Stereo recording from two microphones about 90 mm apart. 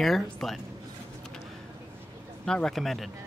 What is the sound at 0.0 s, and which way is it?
Speech, 5° left (ahead or behind).